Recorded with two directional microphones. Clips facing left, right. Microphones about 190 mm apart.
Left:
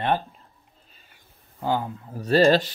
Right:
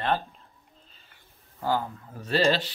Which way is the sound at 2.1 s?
40° left (ahead or behind).